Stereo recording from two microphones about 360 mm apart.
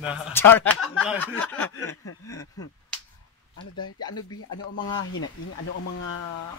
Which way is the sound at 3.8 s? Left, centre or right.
Left.